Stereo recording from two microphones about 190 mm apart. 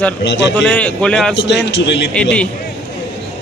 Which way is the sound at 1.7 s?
65° left (ahead or behind).